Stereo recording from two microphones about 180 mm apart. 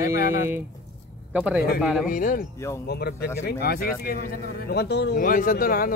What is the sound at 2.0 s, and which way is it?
Speech, 50° left (ahead or behind).